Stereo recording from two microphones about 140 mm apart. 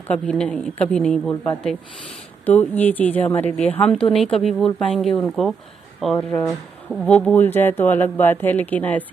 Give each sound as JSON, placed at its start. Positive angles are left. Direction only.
{"t": 0.1, "sound": "speech", "side_deg": 10}
{"t": 1.3, "sound": "speech", "side_deg": 20}
{"t": 3.9, "sound": "speech", "side_deg": 0}
{"t": 6.1, "sound": "speech", "side_deg": 20}
{"t": 6.5, "sound": "speech", "side_deg": 0}
{"t": 7.1, "sound": "speech", "side_deg": 10}